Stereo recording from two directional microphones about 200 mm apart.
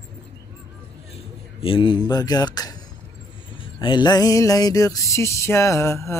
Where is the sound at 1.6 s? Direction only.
25° left (ahead or behind).